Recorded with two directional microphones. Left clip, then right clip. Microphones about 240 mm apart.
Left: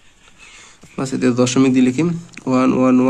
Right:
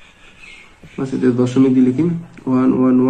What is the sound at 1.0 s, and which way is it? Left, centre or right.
A man's voice, left.